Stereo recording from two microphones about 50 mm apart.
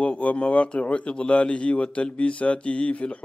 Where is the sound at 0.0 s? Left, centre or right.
Left.